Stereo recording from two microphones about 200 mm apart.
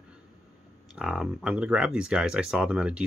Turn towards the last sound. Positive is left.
turn(degrees=-5)  # may be behind; listen again after turning